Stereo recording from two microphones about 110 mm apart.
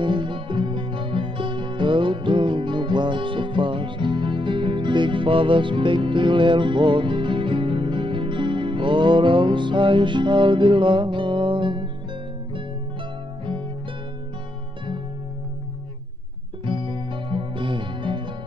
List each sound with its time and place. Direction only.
0.0 s music: 50° right (ahead or behind)
16.6 s music: 50° right (ahead or behind)